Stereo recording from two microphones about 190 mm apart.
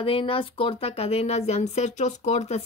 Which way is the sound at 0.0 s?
30° left (ahead or behind).